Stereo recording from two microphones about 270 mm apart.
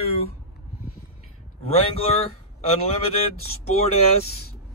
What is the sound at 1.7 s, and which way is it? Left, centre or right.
Speech, left.